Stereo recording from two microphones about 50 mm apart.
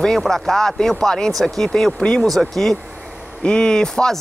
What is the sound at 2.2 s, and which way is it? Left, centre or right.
Speech, centre.